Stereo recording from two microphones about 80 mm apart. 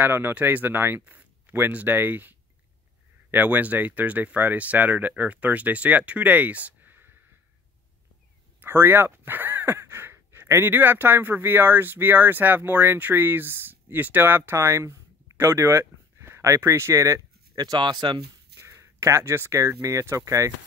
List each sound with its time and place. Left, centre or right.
0.0 s speech: right
8.5 s speech: right
18.6 s a sound: right
19.8 s speech: right